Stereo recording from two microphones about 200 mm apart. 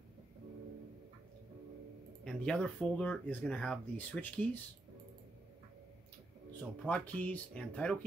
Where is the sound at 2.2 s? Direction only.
5° left (ahead or behind).